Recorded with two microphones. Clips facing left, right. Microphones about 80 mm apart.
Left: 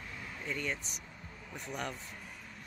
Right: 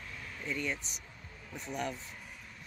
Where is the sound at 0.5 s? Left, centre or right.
Left.